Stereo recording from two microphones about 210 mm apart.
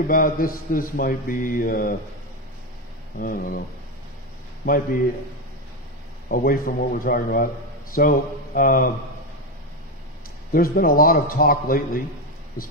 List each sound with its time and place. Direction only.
0.1 s mantra: 45° left (ahead or behind)
3.2 s mantra: 45° left (ahead or behind)
6.2 s mantra: 45° left (ahead or behind)
10.5 s mantra: 45° left (ahead or behind)